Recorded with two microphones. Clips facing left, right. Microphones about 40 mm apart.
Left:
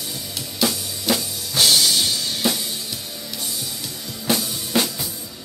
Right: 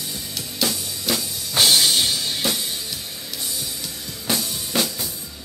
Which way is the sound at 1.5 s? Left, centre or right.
Right.